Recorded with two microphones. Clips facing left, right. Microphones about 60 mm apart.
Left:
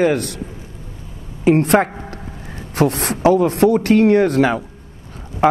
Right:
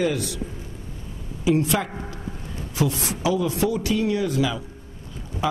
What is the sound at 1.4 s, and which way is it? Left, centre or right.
Speech, left.